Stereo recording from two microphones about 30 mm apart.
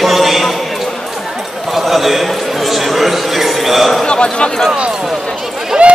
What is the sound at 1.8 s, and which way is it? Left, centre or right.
Chatter, centre.